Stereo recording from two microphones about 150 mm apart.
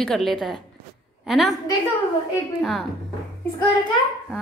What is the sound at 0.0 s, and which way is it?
A woman's voice, centre (ahead or behind).